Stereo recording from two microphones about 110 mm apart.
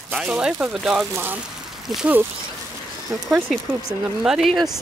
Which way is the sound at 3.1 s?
10° right (ahead or behind).